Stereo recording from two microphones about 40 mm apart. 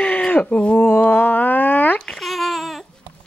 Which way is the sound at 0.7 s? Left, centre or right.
Left.